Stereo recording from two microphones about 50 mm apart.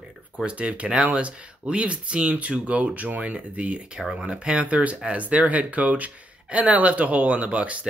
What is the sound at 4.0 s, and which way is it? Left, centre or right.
Speech, centre.